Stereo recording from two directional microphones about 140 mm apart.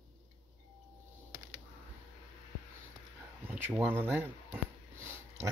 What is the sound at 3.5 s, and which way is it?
Speech, 15° right (ahead or behind).